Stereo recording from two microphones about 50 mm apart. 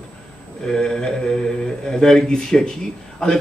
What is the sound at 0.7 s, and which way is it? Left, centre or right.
Speech, centre.